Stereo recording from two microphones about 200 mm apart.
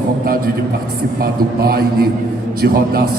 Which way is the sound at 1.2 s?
50° right (ahead or behind).